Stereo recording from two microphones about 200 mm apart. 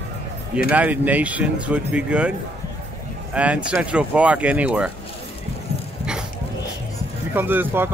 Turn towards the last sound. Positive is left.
turn(degrees=-10)  # may be behind; listen again after turning